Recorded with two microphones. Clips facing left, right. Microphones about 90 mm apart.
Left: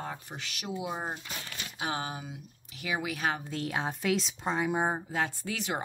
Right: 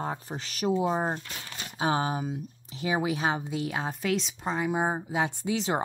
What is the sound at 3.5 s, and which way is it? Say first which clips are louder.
Speech: right 2 dB; centre (ahead or behind).